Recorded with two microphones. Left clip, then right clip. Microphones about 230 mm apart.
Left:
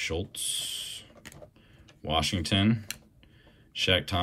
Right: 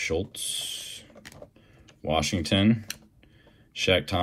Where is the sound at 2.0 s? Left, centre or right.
Centre.